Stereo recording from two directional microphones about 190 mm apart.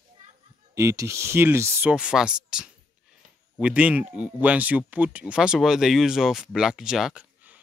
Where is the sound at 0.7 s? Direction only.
15° right (ahead or behind).